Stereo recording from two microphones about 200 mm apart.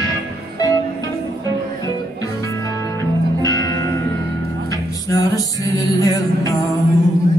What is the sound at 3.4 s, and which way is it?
Music, 15° left (ahead or behind).